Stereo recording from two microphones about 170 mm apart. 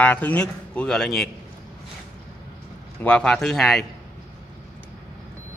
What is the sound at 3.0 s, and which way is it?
Speech, 5° left (ahead or behind).